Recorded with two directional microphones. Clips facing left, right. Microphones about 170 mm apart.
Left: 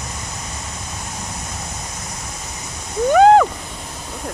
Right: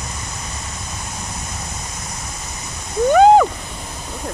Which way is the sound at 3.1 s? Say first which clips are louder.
Even; centre (ahead or behind).